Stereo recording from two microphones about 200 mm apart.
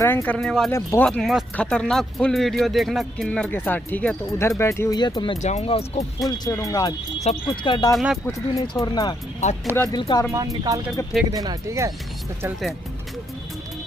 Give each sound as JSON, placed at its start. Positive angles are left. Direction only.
{"t": 0.0, "sound": "speech", "side_deg": 10}
{"t": 0.7, "sound": "speech", "side_deg": 15}
{"t": 1.0, "sound": "speech", "side_deg": 0}
{"t": 6.3, "sound": "speech", "side_deg": 20}
{"t": 7.9, "sound": "speech", "side_deg": 0}
{"t": 8.3, "sound": "speech", "side_deg": 15}
{"t": 10.3, "sound": "speech", "side_deg": -15}